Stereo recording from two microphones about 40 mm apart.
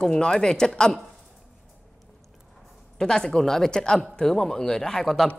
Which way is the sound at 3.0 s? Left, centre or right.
Centre.